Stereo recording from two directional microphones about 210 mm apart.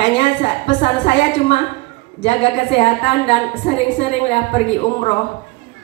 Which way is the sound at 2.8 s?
25° left (ahead or behind).